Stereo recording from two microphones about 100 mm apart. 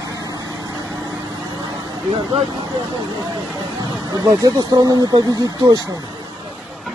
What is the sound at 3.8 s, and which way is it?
Speech, 40° right (ahead or behind).